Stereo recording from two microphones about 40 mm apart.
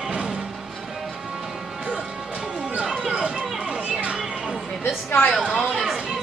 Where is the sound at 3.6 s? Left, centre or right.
Right.